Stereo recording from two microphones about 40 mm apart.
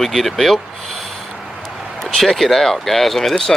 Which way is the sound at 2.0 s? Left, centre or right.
Centre.